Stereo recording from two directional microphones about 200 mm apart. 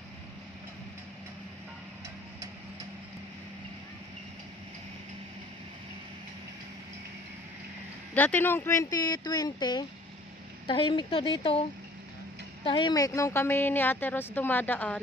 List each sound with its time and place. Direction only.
8.1 s speech: 10° left (ahead or behind); by 11.6 s 25° left (ahead or behind)
12.6 s a woman's voice: 25° left (ahead or behind)